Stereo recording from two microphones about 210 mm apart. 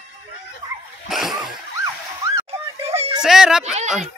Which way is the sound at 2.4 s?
30° right (ahead or behind).